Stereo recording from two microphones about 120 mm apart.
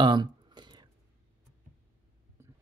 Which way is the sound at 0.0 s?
40° right (ahead or behind).